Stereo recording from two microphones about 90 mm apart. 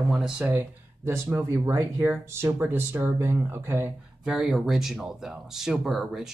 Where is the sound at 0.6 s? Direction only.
25° right (ahead or behind).